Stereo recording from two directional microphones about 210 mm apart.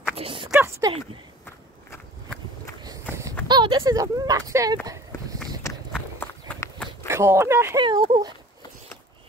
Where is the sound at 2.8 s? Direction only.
15° right (ahead or behind).